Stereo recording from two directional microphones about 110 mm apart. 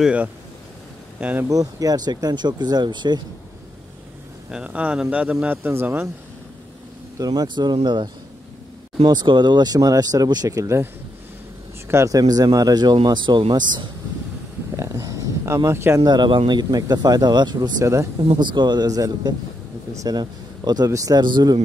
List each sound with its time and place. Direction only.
0.0 s a man's voice: 10° right (ahead or behind)
1.5 s speech: 35° right (ahead or behind)
4.5 s a man's voice: 10° right (ahead or behind)
7.2 s speech: 35° right (ahead or behind)
11.9 s speech: 30° right (ahead or behind)
12.9 s speech: 45° right (ahead or behind)
14.8 s a sound: 30° right (ahead or behind)
16.0 s speech: 40° right (ahead or behind)
18.3 s speech: 45° right (ahead or behind)